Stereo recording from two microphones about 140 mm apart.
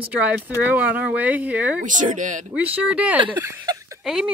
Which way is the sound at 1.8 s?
65° right (ahead or behind).